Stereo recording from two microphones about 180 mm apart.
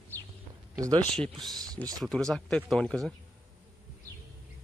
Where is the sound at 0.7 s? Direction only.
20° right (ahead or behind).